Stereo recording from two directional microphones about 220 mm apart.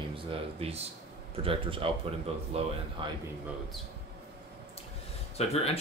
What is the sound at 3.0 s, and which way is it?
Speech, 20° right (ahead or behind).